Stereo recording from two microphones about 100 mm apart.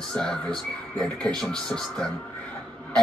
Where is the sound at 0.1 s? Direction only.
5° left (ahead or behind).